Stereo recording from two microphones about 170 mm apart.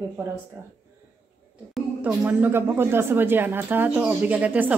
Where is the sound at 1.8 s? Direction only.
10° right (ahead or behind).